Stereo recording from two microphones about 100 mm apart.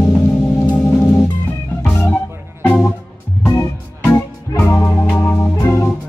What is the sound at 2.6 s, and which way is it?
Music, 15° left (ahead or behind).